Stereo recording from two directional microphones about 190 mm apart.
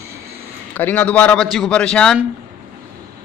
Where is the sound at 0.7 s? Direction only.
10° left (ahead or behind).